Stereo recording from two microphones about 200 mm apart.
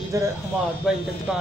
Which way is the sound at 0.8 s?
5° right (ahead or behind).